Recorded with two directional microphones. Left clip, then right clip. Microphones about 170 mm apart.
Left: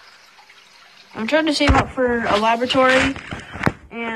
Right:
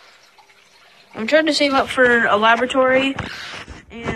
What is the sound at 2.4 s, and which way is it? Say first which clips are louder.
Speech: right 1 dB; 5° left (ahead or behind).